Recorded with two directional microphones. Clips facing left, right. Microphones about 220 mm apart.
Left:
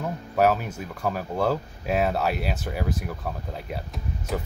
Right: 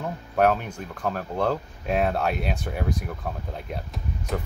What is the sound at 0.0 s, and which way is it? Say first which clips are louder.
Speech: even; 5° left (ahead or behind).